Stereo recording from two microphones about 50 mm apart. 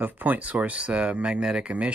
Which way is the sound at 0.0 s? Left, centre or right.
Right.